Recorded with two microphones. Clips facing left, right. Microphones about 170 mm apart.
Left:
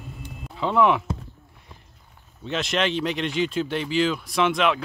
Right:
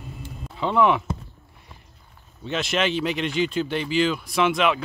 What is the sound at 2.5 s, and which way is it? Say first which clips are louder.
Speech: even; centre (ahead or behind).